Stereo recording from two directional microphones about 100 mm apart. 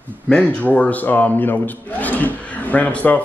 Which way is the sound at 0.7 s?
15° left (ahead or behind).